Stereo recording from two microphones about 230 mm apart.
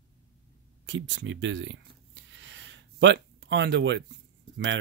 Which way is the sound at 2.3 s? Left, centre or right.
Right.